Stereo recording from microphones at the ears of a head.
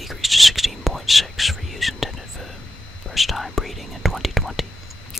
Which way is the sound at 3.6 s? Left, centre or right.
Centre.